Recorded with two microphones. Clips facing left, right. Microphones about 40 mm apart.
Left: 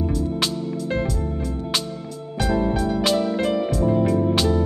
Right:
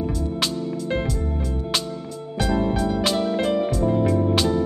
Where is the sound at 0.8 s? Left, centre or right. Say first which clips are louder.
Left 1 dB; right.